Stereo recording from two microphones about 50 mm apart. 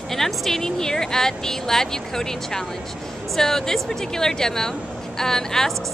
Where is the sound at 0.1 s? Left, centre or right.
Centre.